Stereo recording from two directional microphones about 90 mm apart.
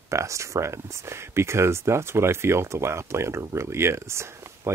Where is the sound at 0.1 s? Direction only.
35° right (ahead or behind).